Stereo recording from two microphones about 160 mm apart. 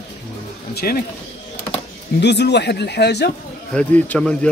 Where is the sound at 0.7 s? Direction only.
70° left (ahead or behind).